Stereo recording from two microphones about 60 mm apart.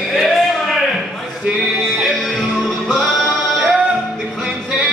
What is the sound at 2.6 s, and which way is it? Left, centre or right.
Music, centre.